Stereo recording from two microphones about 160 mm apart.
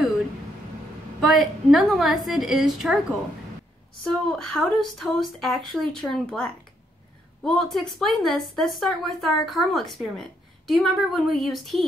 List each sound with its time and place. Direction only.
1.2 s a woman's voice: centre (ahead or behind)
4.0 s a woman's voice: 5° left (ahead or behind)